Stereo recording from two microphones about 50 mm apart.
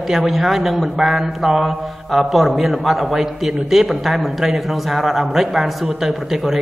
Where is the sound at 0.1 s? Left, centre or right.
Centre.